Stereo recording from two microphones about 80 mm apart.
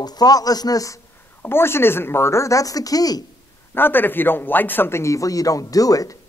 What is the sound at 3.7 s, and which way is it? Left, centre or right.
Speech, left.